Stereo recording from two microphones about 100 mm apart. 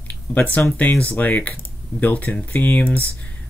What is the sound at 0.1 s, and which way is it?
Speech, 15° left (ahead or behind).